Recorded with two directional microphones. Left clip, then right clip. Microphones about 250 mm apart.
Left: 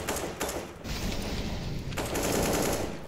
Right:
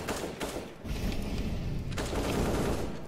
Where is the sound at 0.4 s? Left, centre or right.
Left.